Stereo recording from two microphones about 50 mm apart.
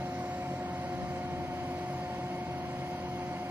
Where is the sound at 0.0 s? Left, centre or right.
Right.